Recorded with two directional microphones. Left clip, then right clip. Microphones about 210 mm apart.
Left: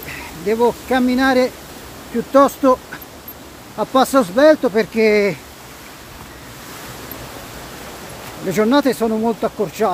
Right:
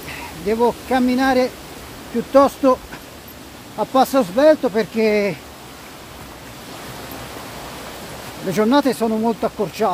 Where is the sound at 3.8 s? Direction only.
20° left (ahead or behind).